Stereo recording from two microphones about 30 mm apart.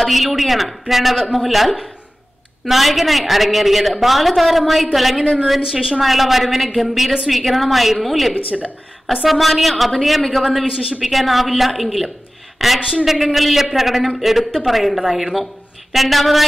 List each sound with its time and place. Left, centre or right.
0.0 s a woman's voice: centre
5.7 s a woman's voice: right
5.9 s a woman's voice: centre